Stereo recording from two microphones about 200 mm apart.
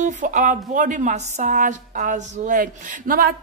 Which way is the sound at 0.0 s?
40° right (ahead or behind).